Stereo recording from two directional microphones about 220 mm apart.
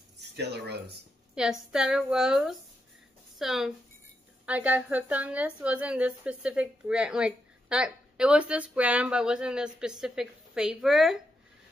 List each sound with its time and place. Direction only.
0.4 s speech: 50° right (ahead or behind)
1.3 s a woman's voice: 5° right (ahead or behind)